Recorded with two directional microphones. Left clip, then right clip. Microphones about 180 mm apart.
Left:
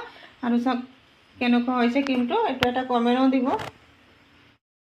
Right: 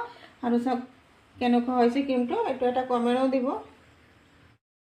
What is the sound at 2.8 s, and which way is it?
Speech, 20° left (ahead or behind).